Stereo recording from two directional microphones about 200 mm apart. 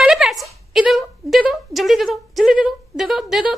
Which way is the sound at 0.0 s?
Centre (ahead or behind).